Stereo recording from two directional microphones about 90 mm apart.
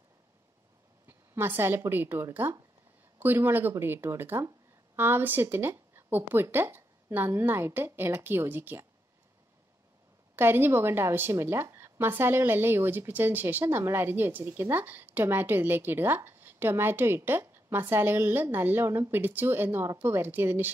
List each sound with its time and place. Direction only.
1.0 s a woman's voice: 25° right (ahead or behind)
10.3 s a woman's voice: 25° right (ahead or behind)